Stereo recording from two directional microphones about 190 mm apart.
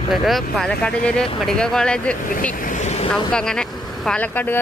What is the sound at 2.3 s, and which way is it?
Vehicle, 45° left (ahead or behind).